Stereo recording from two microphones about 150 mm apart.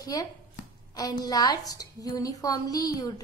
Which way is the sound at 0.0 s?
25° left (ahead or behind).